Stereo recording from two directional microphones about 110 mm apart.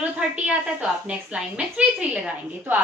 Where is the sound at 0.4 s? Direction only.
10° right (ahead or behind).